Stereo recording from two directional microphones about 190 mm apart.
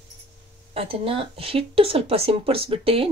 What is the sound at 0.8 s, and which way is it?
Speech, 30° right (ahead or behind).